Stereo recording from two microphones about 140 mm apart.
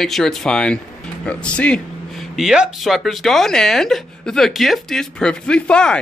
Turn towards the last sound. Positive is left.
turn(degrees=5)  # may be behind; listen again after turning